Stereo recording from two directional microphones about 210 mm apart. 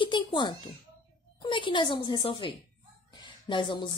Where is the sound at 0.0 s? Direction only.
20° left (ahead or behind).